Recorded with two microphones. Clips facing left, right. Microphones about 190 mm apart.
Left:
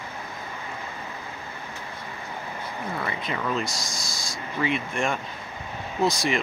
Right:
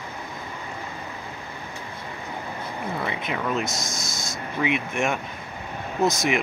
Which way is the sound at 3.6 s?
20° right (ahead or behind).